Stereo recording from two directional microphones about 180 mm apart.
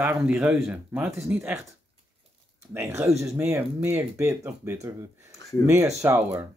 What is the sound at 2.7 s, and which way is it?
Speech, 15° right (ahead or behind).